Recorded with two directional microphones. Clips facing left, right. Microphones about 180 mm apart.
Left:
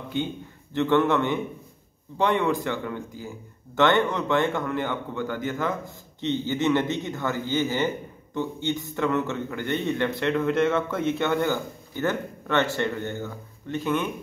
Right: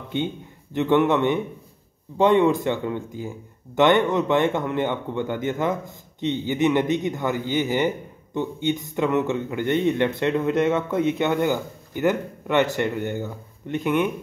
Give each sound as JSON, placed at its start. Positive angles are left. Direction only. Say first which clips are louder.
{"t": 0.7, "sound": "speech", "louder": "right 2 dB", "side_deg": -15}